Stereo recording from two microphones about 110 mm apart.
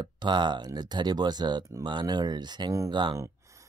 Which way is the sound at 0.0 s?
45° right (ahead or behind).